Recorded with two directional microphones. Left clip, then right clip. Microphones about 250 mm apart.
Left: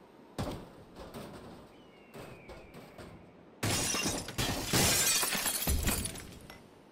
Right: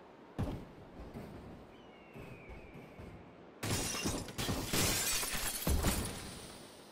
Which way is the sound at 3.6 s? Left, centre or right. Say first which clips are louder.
Left 5 dB; centre.